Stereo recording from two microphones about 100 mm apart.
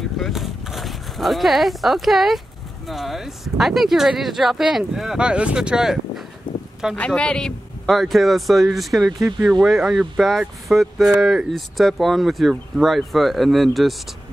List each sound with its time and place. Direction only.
0.2 s speech: centre (ahead or behind)
6.5 s a sound: 50° left (ahead or behind)
7.1 s speech: 10° left (ahead or behind)